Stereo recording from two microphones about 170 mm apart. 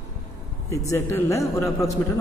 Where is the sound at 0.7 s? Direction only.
20° left (ahead or behind).